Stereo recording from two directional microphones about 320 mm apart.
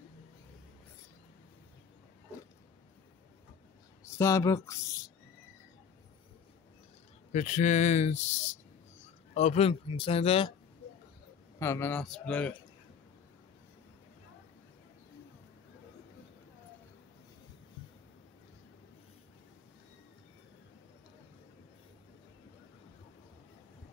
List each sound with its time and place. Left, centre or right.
4.0 s speech: centre
7.3 s speech: left
11.6 s speech: centre